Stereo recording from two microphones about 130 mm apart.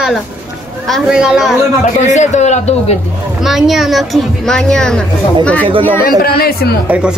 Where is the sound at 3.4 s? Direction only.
Centre (ahead or behind).